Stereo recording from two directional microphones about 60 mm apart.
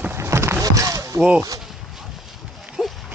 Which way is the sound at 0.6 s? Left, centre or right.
Right.